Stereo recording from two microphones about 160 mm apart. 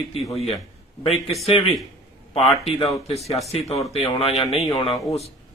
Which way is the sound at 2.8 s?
40° left (ahead or behind).